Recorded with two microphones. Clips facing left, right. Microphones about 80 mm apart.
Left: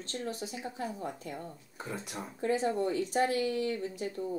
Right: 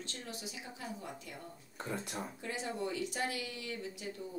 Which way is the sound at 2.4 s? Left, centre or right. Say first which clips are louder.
Left 12 dB; left.